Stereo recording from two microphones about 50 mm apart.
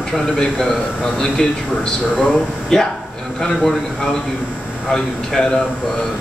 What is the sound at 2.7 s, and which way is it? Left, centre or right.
Speech, centre.